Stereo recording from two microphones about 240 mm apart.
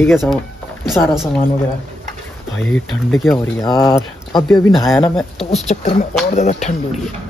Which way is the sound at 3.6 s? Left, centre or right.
Centre.